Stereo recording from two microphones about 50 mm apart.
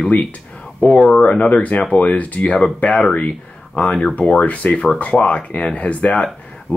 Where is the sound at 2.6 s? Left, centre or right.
Centre.